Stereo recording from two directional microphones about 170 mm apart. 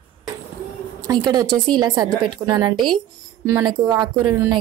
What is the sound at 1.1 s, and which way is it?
A woman's voice, 25° right (ahead or behind).